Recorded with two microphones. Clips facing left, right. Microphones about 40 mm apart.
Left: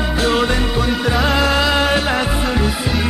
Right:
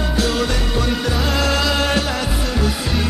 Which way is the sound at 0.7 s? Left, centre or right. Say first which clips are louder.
Left 3 dB; centre.